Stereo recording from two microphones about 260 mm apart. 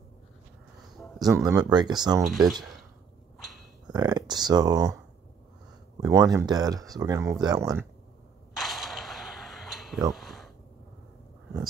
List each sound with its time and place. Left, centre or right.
1.2 s speech: centre
2.2 s speech: centre
3.3 s a sound: centre
3.9 s speech: centre
5.9 s speech: centre
8.5 s a sound: centre